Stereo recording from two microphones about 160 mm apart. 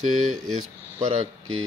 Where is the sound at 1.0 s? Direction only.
40° right (ahead or behind).